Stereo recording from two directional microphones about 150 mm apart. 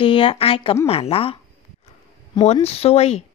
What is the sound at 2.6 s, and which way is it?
Speech, 40° left (ahead or behind).